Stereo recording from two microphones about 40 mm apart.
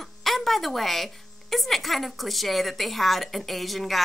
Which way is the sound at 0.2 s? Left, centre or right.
Centre.